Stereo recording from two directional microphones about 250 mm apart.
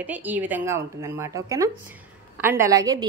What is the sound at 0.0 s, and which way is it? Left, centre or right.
A woman's voice, centre.